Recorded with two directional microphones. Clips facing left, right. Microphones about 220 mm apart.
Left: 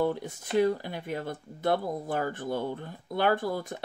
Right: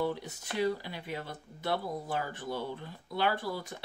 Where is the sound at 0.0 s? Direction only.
50° left (ahead or behind).